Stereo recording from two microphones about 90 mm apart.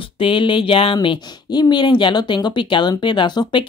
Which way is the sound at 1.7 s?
60° left (ahead or behind).